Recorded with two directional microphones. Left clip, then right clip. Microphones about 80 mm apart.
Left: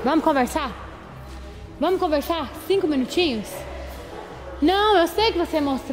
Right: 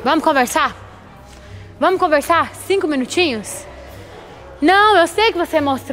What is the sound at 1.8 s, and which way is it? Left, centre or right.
Speech, right.